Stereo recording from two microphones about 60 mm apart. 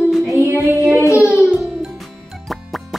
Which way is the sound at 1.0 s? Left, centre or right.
Left.